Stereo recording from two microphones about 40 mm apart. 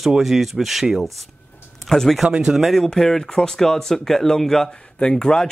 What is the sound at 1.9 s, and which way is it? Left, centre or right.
Speech, centre.